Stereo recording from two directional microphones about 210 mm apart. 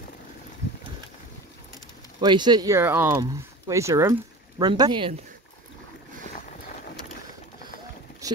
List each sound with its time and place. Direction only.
2.1 s speech: 20° right (ahead or behind)